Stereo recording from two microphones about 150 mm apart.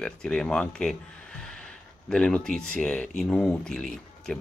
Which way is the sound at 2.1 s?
5° left (ahead or behind).